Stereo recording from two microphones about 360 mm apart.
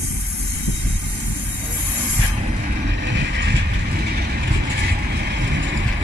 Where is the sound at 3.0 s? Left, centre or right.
Right.